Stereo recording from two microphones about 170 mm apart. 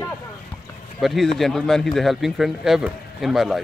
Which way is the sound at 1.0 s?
Centre (ahead or behind).